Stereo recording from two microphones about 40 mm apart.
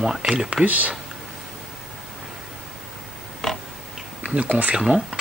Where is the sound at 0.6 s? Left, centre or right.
Right.